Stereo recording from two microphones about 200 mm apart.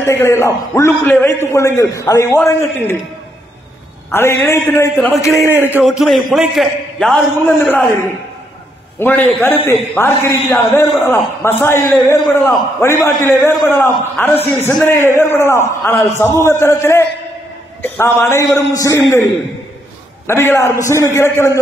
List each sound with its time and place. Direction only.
0.0 s a man's voice: 15° left (ahead or behind)
4.1 s a man's voice: 15° left (ahead or behind)
9.0 s a man's voice: 10° left (ahead or behind)
20.2 s a man's voice: 10° left (ahead or behind)